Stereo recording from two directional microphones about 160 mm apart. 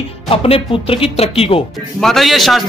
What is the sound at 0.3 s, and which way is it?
Speech, 35° left (ahead or behind).